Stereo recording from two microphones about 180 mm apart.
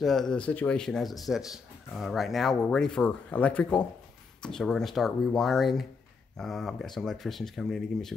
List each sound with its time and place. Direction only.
0.0 s speech: centre (ahead or behind)